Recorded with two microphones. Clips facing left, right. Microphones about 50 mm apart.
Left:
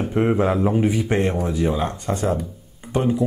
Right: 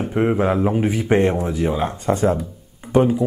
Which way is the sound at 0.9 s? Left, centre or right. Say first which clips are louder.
Right 3 dB; right.